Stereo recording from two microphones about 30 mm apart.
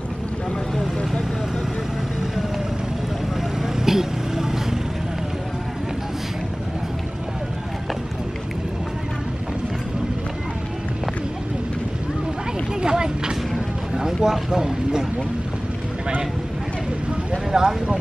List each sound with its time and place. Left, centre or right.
3.5 s vehicle: centre
12.8 s vehicle: right
13.9 s a sound: centre
14.5 s vehicle: right
17.5 s vehicle: centre